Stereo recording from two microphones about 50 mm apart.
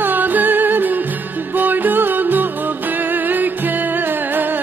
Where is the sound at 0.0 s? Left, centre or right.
Right.